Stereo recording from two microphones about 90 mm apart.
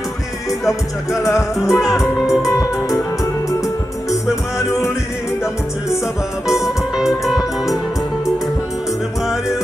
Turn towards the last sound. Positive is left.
turn(degrees=-5)  # may be behind; listen again after turning